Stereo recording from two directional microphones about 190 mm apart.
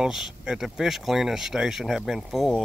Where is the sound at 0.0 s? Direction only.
Centre (ahead or behind).